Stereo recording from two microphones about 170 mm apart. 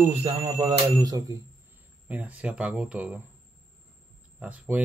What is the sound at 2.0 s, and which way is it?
Speech, 10° right (ahead or behind).